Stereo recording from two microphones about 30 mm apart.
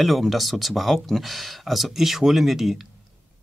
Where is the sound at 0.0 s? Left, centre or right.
Centre.